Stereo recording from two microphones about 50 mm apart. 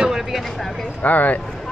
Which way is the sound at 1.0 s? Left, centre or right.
Left.